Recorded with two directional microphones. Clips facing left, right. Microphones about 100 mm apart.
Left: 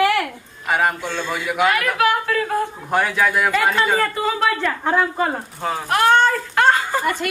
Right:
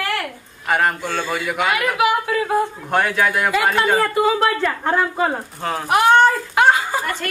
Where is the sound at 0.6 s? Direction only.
Centre (ahead or behind).